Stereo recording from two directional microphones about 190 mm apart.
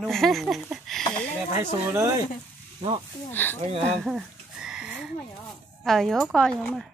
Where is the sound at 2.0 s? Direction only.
15° right (ahead or behind).